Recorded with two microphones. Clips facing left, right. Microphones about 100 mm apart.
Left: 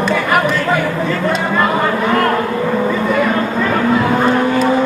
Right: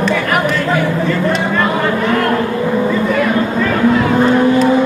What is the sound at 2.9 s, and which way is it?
Vehicle, 5° left (ahead or behind).